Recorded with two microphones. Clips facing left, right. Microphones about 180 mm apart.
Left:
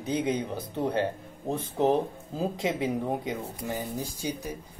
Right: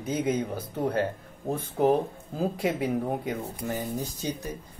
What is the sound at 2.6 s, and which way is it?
Speech, 20° left (ahead or behind).